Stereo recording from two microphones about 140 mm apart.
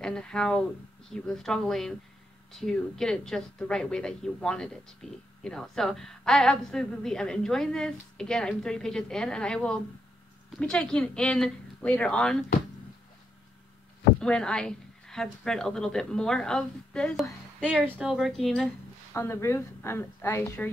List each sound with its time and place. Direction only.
0.0 s a woman's voice: 5° left (ahead or behind)
14.2 s a woman's voice: 5° left (ahead or behind)
19.1 s speech: 20° left (ahead or behind)